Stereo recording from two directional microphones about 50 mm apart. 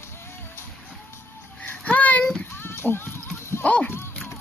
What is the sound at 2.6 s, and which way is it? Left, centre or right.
Clip-clop, left.